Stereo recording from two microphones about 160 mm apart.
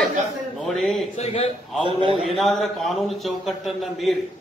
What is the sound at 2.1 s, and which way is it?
A man's voice, centre (ahead or behind).